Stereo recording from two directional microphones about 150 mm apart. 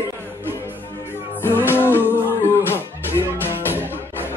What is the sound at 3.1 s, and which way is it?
Music, 15° left (ahead or behind).